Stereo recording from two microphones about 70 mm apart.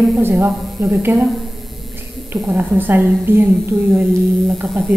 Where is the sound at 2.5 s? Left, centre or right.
Right.